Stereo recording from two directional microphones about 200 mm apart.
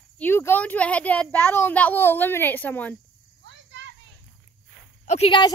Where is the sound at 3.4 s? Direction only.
65° right (ahead or behind).